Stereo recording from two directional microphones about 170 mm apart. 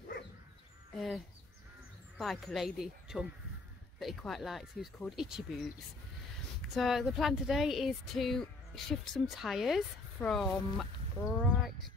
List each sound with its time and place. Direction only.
0.9 s speech: centre (ahead or behind)
6.7 s speech: centre (ahead or behind)
11.2 s speech: 15° left (ahead or behind)